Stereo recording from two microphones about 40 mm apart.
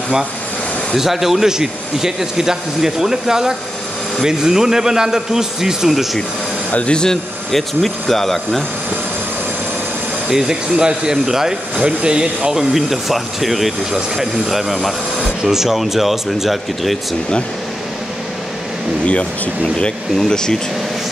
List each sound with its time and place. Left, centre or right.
0.9 s speech: centre
6.7 s speech: left
7.0 s speech: centre
10.3 s speech: centre
10.8 s speech: right
12.7 s speech: centre
19.0 s speech: left
20.2 s speech: centre